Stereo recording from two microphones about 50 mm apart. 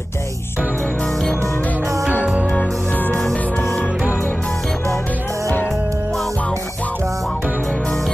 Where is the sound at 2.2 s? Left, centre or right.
Centre.